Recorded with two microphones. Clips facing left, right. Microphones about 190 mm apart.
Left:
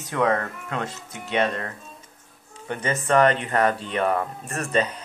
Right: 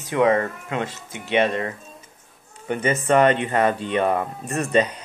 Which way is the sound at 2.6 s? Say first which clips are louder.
Right 4 dB; 15° right (ahead or behind).